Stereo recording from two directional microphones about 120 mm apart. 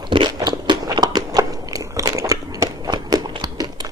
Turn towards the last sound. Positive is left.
turn(degrees=-35)  # may be behind; listen again after turning